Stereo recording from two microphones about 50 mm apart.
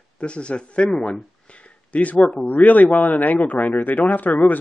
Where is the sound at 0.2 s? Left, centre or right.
Left.